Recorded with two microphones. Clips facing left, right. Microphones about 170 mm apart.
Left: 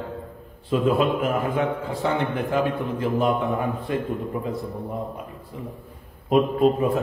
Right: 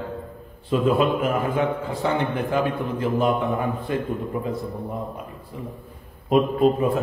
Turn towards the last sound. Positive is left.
turn(degrees=0)  # may be behind; listen again after turning